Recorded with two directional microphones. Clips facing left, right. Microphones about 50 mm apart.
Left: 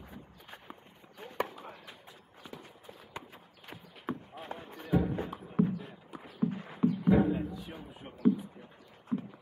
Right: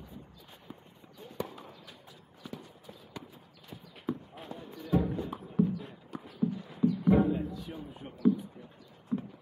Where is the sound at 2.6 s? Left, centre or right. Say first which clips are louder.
Even; left.